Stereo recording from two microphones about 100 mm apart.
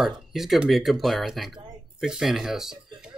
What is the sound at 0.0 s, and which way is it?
Speech, centre (ahead or behind).